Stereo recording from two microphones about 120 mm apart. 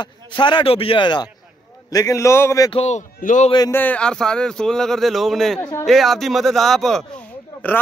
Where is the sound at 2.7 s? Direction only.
65° left (ahead or behind); by 3.5 s 85° left.